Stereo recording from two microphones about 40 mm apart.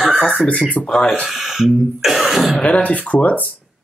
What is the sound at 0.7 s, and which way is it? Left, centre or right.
Speech, left.